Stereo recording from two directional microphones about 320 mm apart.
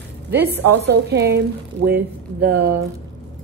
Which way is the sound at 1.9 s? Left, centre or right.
Centre.